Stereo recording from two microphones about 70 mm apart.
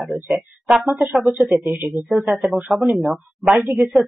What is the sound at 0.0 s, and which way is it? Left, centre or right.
Speech, centre.